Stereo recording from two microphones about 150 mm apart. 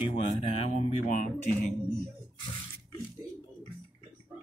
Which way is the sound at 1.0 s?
60° left (ahead or behind).